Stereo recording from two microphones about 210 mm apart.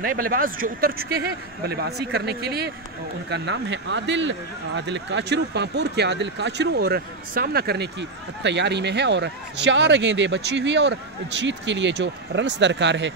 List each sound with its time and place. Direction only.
0.0 s speech: 45° right (ahead or behind)